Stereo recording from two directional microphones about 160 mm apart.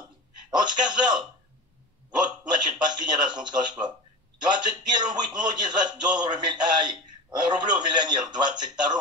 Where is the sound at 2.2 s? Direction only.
25° right (ahead or behind).